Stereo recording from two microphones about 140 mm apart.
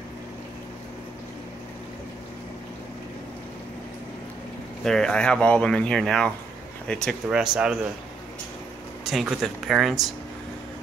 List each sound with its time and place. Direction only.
4.8 s speech: 5° left (ahead or behind)
9.0 s speech: 5° right (ahead or behind)